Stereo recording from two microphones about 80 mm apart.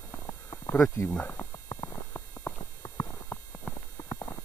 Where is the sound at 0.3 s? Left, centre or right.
Left.